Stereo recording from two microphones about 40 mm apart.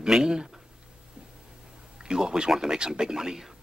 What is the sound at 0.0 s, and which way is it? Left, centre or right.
Speech, centre.